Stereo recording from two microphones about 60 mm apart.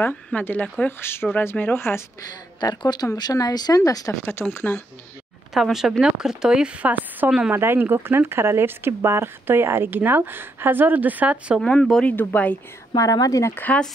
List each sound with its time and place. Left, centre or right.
0.3 s speech: left
2.6 s speech: left
4.3 s speech: left
5.5 s a woman's voice: centre; by 7.2 s right
7.2 s a woman's voice: centre
7.5 s speech: right
12.2 s speech: left
12.9 s speech: left
13.7 s speech: left